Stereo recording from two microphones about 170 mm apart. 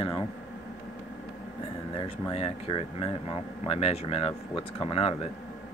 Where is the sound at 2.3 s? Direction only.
35° left (ahead or behind).